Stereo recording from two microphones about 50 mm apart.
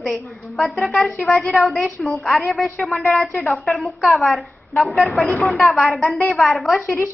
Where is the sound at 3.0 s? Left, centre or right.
Left.